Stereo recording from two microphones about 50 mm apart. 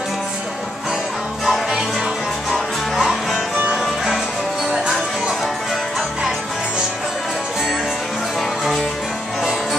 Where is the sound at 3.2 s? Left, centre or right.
Centre.